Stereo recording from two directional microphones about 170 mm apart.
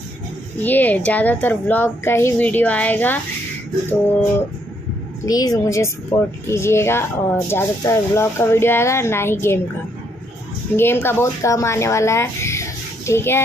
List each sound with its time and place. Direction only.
0.6 s speech: 10° left (ahead or behind)
5.2 s a woman's voice: 20° left (ahead or behind)
10.8 s speech: 15° left (ahead or behind)